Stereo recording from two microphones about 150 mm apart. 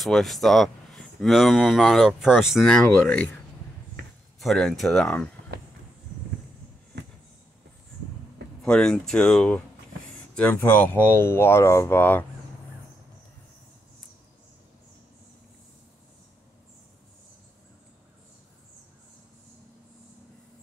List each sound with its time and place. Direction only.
0.0 s speech: centre (ahead or behind)
4.4 s speech: centre (ahead or behind)
8.6 s speech: 5° left (ahead or behind)